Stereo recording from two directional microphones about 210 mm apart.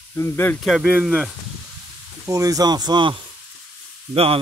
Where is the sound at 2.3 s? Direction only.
15° right (ahead or behind).